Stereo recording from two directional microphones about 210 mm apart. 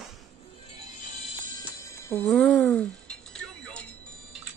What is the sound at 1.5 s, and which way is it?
Music, 10° left (ahead or behind).